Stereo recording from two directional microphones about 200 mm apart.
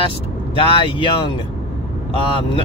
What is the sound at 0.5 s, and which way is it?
Speech, 25° left (ahead or behind).